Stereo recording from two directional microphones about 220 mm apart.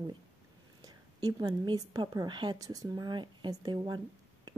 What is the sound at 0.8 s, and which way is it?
A woman's voice, 15° right (ahead or behind).